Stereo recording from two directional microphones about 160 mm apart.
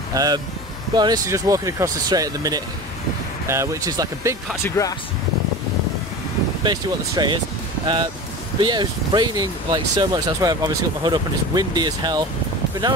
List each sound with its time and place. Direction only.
0.1 s speech: 20° right (ahead or behind)
4.6 s speech: 20° left (ahead or behind)
6.6 s speech: 25° right (ahead or behind)